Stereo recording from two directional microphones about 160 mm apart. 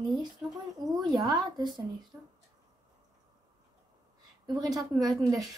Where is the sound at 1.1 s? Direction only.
25° right (ahead or behind).